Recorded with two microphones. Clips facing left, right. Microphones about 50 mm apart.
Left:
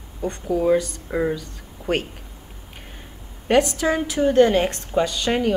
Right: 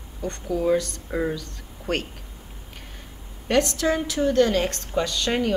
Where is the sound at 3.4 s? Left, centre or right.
Centre.